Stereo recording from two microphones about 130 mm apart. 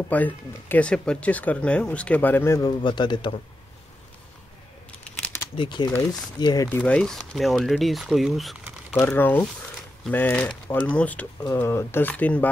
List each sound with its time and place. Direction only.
0.1 s speech: 10° left (ahead or behind)
2.6 s speech: 35° left (ahead or behind)
4.9 s a sound: 10° left (ahead or behind)
5.6 s speech: 35° left (ahead or behind)
6.8 s speech: 5° left (ahead or behind)
8.9 s speech: 20° left (ahead or behind)